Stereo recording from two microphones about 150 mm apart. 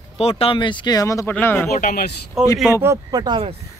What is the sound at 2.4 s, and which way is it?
Speech, centre (ahead or behind).